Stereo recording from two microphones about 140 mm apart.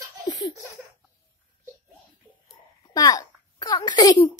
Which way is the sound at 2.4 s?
25° left (ahead or behind).